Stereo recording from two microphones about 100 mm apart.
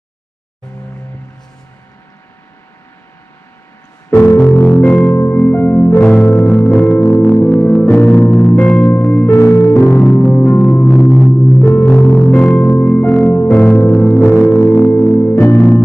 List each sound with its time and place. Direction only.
4.1 s music: 30° left (ahead or behind); by 5.1 s 10° left (ahead or behind)
5.1 s music: 25° left (ahead or behind)
10.1 s music: 25° left (ahead or behind)
10.9 s singing bowl: centre (ahead or behind)
11.3 s music: 20° left (ahead or behind)